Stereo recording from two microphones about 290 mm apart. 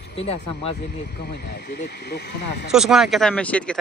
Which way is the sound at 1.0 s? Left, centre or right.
Left.